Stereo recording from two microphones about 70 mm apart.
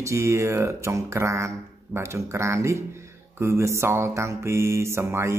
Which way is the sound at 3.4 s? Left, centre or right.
Right.